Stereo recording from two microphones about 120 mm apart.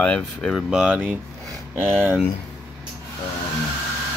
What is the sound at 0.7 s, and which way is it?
Speech, 5° right (ahead or behind).